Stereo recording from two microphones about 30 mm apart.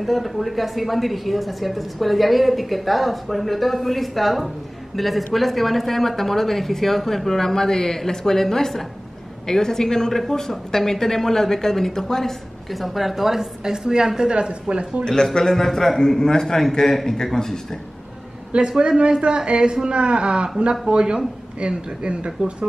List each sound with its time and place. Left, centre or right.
0.0 s a woman's voice: centre
12.7 s a woman's voice: centre; by 14.3 s right
14.3 s speech: right
15.0 s a woman's voice: centre
18.8 s speech: right